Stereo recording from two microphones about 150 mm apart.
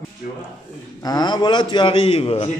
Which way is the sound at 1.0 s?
30° left (ahead or behind).